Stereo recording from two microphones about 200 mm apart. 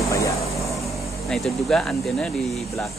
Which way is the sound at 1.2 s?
Centre (ahead or behind).